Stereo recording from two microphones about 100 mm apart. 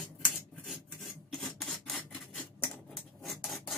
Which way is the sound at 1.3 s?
Centre (ahead or behind).